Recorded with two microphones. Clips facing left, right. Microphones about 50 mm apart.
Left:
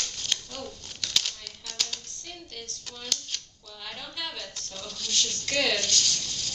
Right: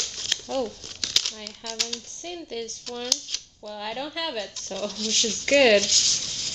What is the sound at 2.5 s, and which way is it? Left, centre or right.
Speech, right.